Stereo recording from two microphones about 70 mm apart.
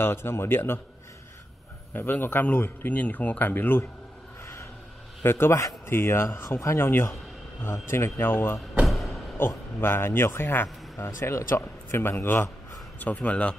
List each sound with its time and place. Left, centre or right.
0.0 s a man's voice: left
2.0 s speech: left
5.2 s a man's voice: left
8.8 s a sound: centre
9.8 s a man's voice: left
13.0 s speech: left